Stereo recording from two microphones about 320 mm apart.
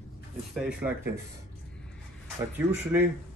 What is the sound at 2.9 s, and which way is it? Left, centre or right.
Speech, centre.